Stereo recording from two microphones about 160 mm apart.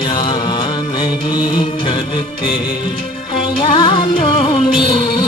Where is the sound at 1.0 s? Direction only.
30° left (ahead or behind).